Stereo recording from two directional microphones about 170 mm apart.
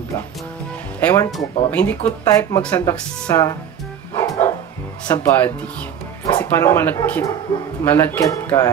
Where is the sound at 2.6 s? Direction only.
5° left (ahead or behind).